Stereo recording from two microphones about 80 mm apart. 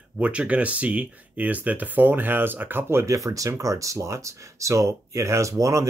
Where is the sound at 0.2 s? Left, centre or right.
Centre.